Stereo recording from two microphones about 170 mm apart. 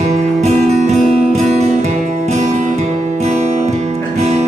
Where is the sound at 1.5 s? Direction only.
40° right (ahead or behind).